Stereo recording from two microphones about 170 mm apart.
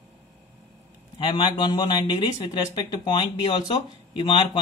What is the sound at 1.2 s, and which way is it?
Speech, 30° left (ahead or behind).